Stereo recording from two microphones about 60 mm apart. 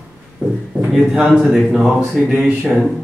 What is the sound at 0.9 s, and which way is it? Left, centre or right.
Speech, centre.